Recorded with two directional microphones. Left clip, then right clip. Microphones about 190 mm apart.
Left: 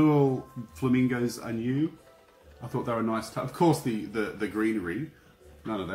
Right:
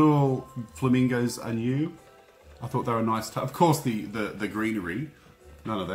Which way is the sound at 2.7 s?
45° right (ahead or behind).